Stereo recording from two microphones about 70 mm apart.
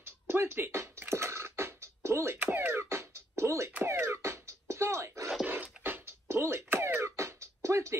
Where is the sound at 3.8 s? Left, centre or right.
Right.